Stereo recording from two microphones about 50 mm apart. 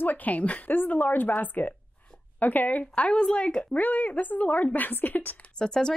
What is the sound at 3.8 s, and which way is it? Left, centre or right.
A woman's voice, left.